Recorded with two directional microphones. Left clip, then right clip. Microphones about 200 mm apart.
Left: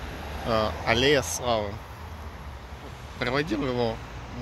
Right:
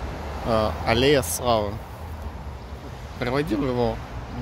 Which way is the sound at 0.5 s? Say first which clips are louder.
Right 2 dB; 5° right (ahead or behind).